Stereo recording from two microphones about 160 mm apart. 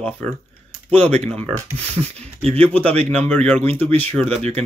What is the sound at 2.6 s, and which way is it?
Speech, 10° left (ahead or behind).